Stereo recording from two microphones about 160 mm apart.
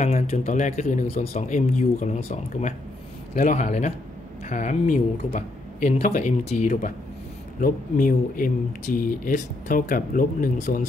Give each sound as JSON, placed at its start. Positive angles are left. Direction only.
{"t": 0.0, "sound": "speech", "side_deg": 45}
{"t": 7.6, "sound": "speech", "side_deg": 60}